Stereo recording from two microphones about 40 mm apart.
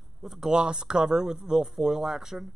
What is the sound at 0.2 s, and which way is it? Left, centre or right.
Speech, centre.